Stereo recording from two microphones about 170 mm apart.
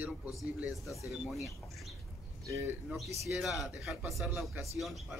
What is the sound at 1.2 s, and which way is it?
Speech, centre (ahead or behind).